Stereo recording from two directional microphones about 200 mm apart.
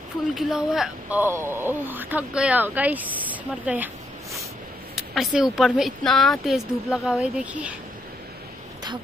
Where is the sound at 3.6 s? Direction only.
10° right (ahead or behind).